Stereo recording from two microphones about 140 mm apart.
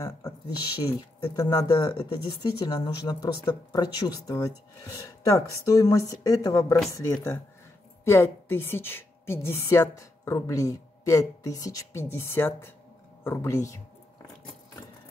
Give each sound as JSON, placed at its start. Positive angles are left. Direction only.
{"t": 0.0, "sound": "a woman's voice", "side_deg": 25}
{"t": 5.7, "sound": "a woman's voice", "side_deg": 25}
{"t": 8.0, "sound": "a woman's voice", "side_deg": 20}